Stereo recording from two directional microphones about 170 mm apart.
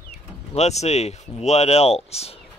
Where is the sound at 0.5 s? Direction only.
40° left (ahead or behind).